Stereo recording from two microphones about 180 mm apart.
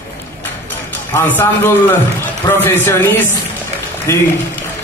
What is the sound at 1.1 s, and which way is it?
A man's voice, 10° left (ahead or behind).